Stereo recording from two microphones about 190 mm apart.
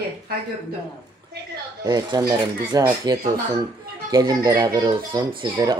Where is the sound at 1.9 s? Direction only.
20° right (ahead or behind).